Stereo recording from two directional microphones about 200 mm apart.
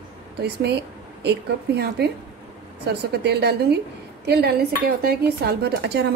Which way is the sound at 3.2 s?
55° right (ahead or behind).